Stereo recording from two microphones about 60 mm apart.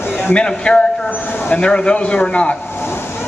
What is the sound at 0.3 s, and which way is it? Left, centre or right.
Speech, centre.